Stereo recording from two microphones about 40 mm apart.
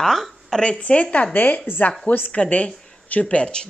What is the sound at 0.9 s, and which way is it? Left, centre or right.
Speech, left.